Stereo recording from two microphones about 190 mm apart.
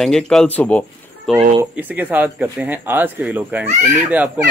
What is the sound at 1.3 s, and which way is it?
Speech, 5° right (ahead or behind).